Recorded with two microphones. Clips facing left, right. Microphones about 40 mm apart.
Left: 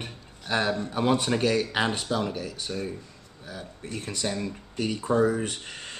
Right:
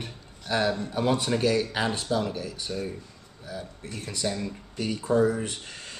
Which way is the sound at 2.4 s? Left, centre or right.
Centre.